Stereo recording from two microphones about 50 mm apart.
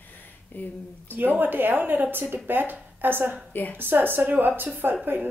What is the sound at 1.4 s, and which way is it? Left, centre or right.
A woman's voice, right.